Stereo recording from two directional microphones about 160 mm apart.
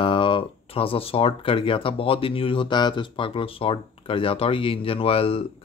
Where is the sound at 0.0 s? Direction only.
30° left (ahead or behind).